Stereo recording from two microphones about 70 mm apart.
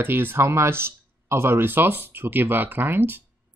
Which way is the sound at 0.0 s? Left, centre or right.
Right.